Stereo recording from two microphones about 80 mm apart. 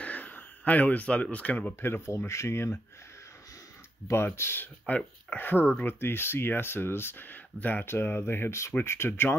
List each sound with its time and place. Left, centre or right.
0.0 s speech: left
1.8 s speech: left
4.1 s speech: left
4.8 s speech: centre